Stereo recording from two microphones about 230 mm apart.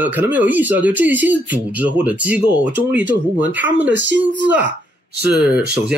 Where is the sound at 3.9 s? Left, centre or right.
Right.